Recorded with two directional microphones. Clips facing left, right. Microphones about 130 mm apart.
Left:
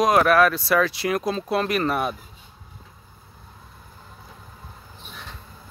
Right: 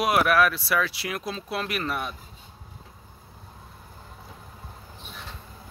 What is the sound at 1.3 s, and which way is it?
Speech, 45° left (ahead or behind).